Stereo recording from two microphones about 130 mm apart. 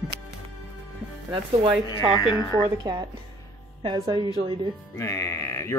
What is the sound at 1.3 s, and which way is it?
Speech, 40° right (ahead or behind).